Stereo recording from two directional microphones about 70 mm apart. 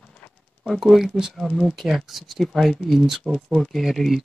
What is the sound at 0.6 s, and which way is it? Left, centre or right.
Speech, centre.